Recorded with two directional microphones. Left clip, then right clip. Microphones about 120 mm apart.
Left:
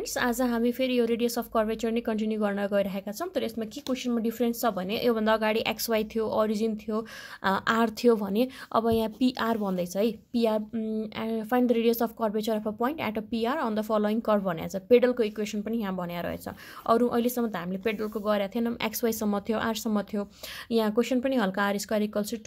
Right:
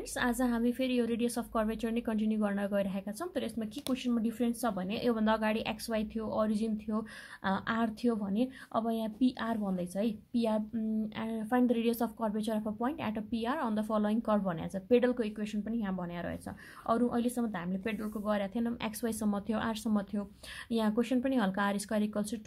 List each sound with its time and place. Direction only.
0.1 s a woman's voice: 35° left (ahead or behind)
7.4 s a woman's voice: 50° left (ahead or behind); by 22.4 s 30° left (ahead or behind)